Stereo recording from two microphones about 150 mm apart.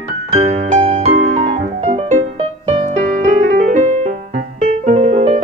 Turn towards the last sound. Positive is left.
turn(degrees=-50)  # may be behind; listen again after turning